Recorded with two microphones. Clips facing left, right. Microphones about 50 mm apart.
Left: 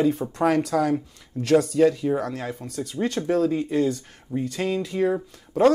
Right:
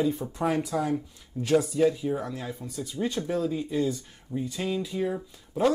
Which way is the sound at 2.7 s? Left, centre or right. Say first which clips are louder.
Left 4 dB; left.